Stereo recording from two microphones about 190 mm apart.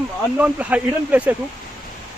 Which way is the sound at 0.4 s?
5° right (ahead or behind).